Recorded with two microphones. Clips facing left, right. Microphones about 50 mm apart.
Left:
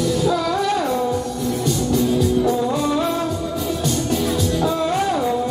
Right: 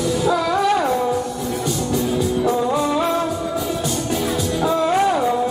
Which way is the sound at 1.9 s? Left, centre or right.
Centre.